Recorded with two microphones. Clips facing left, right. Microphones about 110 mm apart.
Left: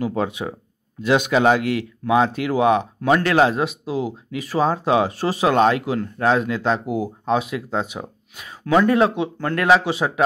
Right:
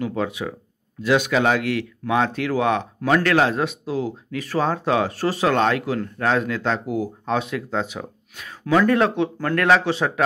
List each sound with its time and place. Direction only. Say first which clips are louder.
0.0 s speech: left 2 dB; 30° left (ahead or behind); by 10.2 s 10° left (ahead or behind)